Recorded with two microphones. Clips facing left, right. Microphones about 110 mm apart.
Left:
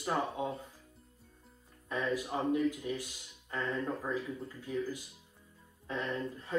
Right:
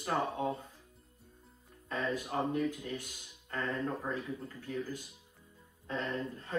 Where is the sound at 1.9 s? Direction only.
15° left (ahead or behind).